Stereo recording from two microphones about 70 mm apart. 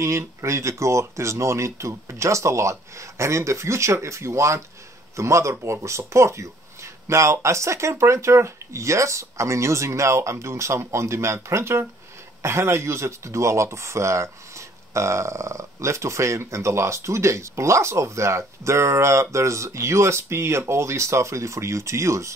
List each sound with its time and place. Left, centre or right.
0.0 s speech: right